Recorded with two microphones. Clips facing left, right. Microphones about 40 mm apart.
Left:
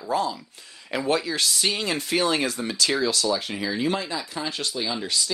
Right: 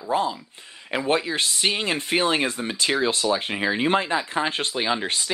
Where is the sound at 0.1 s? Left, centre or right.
Right.